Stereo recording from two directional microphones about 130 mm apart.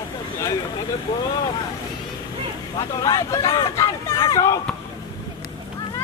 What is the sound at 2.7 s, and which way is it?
Speech, 30° left (ahead or behind).